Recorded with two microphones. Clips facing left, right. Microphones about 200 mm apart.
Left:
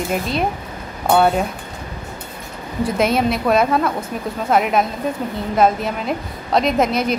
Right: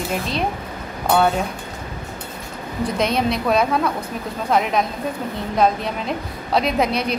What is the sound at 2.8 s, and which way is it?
A woman's voice, 5° left (ahead or behind).